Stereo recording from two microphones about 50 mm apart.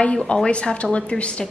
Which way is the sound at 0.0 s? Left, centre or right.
Left.